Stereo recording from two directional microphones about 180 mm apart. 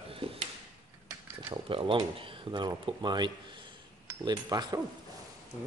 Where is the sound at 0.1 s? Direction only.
30° right (ahead or behind).